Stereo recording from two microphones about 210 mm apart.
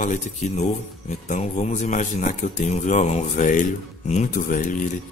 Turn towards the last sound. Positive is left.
turn(degrees=40)  # may be behind; listen again after turning